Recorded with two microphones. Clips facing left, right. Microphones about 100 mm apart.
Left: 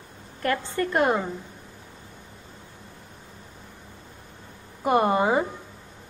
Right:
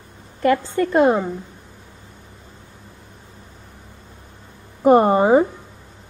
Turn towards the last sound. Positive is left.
turn(degrees=-35)  # may be behind; listen again after turning